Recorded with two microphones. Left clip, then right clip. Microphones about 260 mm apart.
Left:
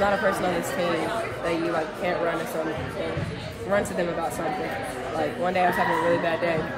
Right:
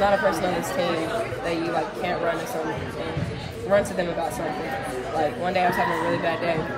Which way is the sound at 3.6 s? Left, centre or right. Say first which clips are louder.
Right 3 dB; centre.